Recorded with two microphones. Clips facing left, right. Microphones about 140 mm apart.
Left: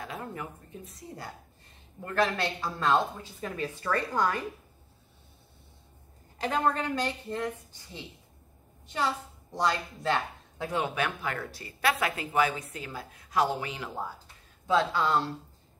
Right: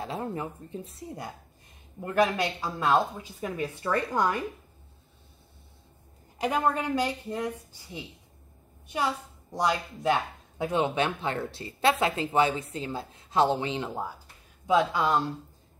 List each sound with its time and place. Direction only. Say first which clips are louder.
0.0 s a woman's voice: right 5 dB; 30° right (ahead or behind)
6.3 s a woman's voice: right 1 dB; 15° right (ahead or behind)
14.7 s speech: right 2 dB; 15° right (ahead or behind)